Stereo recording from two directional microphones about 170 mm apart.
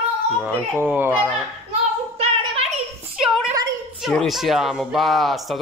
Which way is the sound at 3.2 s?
5° right (ahead or behind).